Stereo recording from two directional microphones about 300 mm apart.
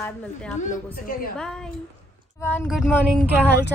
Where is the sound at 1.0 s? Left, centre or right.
Left.